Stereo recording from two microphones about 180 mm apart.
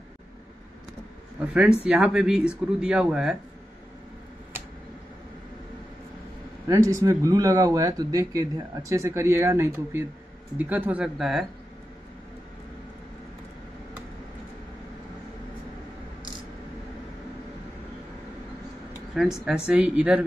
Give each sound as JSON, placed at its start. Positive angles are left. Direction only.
{"t": 1.5, "sound": "speech", "side_deg": -5}
{"t": 6.7, "sound": "speech", "side_deg": -15}
{"t": 19.2, "sound": "speech", "side_deg": -5}